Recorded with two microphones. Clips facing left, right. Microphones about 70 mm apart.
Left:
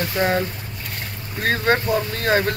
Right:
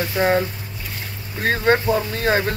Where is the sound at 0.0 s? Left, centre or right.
Centre.